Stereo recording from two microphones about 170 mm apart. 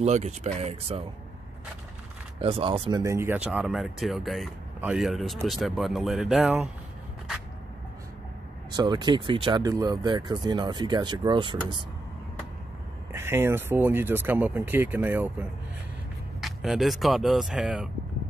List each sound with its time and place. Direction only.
0.0 s speech: 40° right (ahead or behind)
2.3 s speech: 30° right (ahead or behind)
3.0 s speech: 15° right (ahead or behind)
8.7 s speech: 25° right (ahead or behind)
13.1 s speech: 15° right (ahead or behind)